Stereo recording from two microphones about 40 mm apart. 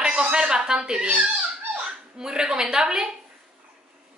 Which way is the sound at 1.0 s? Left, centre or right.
Right.